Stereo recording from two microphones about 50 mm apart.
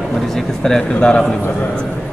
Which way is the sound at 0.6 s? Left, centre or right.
Centre.